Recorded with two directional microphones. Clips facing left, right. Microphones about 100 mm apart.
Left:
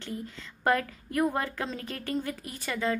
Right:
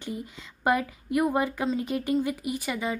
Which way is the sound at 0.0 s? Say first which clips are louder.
Right 2 dB; 15° right (ahead or behind).